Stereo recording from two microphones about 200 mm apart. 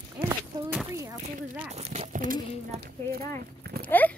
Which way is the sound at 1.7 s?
35° right (ahead or behind).